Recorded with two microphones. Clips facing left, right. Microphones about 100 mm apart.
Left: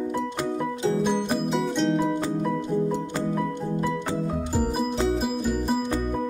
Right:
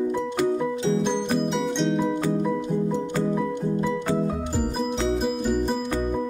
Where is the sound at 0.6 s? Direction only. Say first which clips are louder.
Right 1 dB; 5° left (ahead or behind).